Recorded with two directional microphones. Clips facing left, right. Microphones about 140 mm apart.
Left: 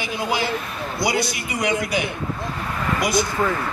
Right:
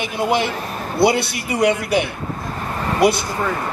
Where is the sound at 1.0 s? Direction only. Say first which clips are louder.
Right 9 dB; 60° right (ahead or behind).